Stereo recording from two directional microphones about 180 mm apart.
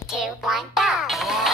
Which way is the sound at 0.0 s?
Centre (ahead or behind).